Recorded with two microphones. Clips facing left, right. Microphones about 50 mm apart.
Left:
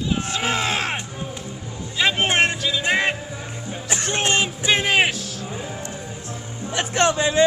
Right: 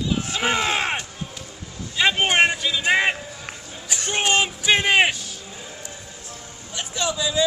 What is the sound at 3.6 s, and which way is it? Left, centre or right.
Music, left.